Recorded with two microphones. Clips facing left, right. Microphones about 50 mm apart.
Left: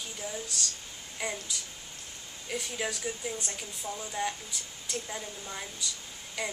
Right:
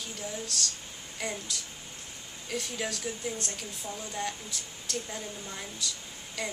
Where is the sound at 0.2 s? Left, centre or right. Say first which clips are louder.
Right 1 dB; centre.